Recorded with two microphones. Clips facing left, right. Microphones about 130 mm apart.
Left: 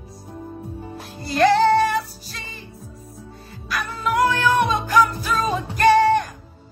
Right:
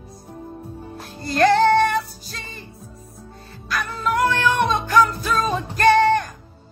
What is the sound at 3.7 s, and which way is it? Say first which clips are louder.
Music: even; 5° left (ahead or behind).